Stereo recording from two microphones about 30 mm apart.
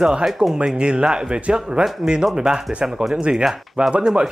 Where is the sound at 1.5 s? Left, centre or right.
Right.